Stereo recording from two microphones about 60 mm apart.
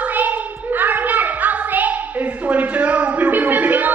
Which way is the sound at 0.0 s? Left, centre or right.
Right.